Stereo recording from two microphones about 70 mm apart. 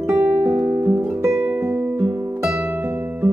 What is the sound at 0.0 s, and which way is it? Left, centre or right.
Music, right.